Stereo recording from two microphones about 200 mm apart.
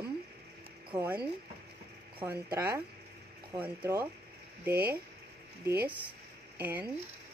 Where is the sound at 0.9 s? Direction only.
10° right (ahead or behind).